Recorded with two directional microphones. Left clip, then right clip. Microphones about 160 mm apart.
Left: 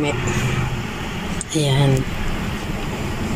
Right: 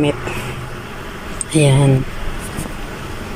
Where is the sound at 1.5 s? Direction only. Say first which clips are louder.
Right 5 dB; 5° right (ahead or behind).